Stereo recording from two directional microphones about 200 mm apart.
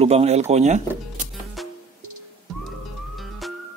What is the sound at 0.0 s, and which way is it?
Speech, 30° right (ahead or behind).